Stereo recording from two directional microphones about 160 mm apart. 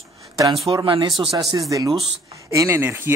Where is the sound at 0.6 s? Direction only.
35° right (ahead or behind).